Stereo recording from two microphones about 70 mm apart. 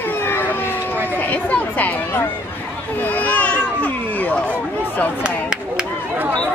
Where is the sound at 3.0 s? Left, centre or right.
Left.